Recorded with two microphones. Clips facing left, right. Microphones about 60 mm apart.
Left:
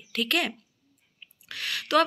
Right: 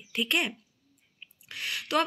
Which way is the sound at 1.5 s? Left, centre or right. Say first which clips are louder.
Left 4 dB; left.